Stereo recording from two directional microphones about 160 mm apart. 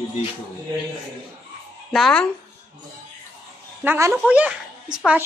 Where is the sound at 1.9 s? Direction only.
5° left (ahead or behind).